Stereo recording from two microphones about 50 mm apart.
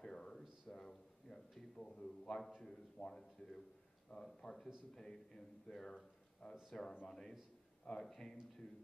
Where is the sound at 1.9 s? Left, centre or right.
Left.